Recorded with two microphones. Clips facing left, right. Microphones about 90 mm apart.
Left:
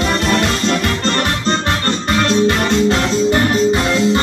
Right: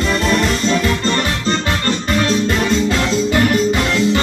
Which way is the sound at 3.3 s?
30° left (ahead or behind).